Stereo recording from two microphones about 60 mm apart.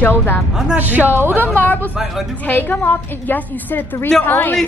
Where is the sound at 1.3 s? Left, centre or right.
Left.